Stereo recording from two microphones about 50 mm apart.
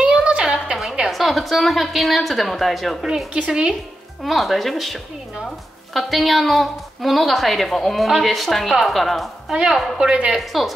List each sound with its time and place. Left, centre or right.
0.0 s a sound: right
1.1 s a woman's voice: centre
3.3 s a woman's voice: right
4.2 s a woman's voice: centre
9.5 s a woman's voice: centre
10.3 s a woman's voice: centre